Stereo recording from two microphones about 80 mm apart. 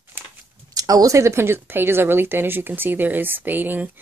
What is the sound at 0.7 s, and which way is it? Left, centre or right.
Speech, right.